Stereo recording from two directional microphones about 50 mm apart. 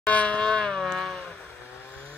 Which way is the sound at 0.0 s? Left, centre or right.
Left.